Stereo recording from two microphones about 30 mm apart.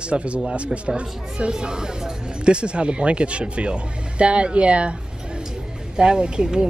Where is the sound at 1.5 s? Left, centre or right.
Right.